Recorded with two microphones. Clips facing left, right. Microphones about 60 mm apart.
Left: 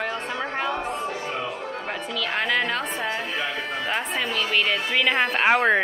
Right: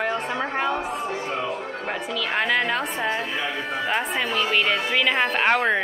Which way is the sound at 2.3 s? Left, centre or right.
Centre.